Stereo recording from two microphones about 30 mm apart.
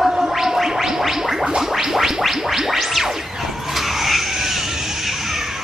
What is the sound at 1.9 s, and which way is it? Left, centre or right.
Music, centre.